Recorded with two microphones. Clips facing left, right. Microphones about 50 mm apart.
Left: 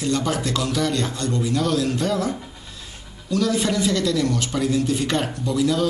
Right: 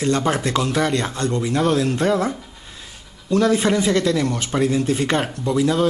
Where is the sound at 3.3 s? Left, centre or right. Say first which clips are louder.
Right 4 dB; right.